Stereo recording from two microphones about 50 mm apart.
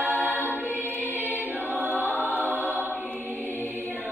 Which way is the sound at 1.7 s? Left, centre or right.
Right.